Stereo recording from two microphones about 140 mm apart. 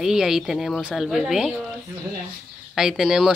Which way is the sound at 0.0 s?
5° right (ahead or behind).